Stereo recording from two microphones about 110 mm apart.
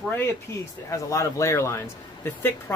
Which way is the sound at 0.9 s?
30° left (ahead or behind).